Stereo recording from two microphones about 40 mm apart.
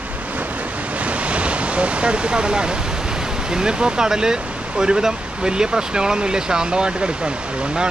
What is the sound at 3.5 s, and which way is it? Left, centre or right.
Speech, right.